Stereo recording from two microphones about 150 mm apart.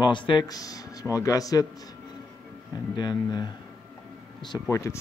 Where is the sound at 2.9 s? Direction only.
30° left (ahead or behind).